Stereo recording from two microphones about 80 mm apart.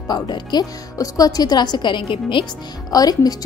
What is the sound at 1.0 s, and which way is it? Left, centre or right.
A woman's voice, left.